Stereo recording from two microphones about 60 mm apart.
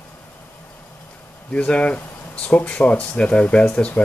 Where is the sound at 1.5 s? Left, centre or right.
Centre.